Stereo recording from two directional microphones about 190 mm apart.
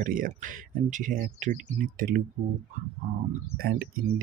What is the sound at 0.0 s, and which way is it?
Speech, 45° right (ahead or behind).